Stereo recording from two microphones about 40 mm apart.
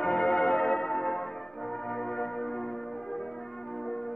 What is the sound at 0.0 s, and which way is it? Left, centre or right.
Brass instrument, left.